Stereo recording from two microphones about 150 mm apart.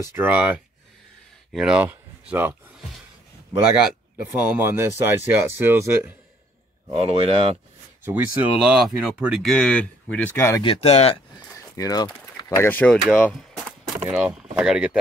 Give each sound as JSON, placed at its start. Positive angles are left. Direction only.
{"t": 0.1, "sound": "speech", "side_deg": -10}
{"t": 4.2, "sound": "speech", "side_deg": -10}
{"t": 6.9, "sound": "speech", "side_deg": -40}
{"t": 8.0, "sound": "speech", "side_deg": -15}
{"t": 8.5, "sound": "speech", "side_deg": -5}
{"t": 9.5, "sound": "speech", "side_deg": 10}
{"t": 10.3, "sound": "speech", "side_deg": 20}
{"t": 10.6, "sound": "speech", "side_deg": 40}
{"t": 11.5, "sound": "speech", "side_deg": 20}
{"t": 14.0, "sound": "speech", "side_deg": -10}